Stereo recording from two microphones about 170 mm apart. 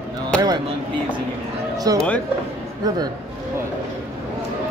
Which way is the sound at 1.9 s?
20° right (ahead or behind).